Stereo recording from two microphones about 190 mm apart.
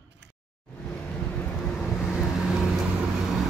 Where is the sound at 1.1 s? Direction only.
5° left (ahead or behind).